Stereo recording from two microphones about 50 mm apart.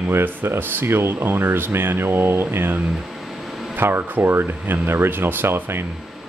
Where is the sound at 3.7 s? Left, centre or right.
Right.